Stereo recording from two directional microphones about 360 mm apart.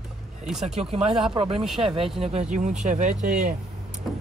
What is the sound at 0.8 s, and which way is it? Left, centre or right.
Speech, centre.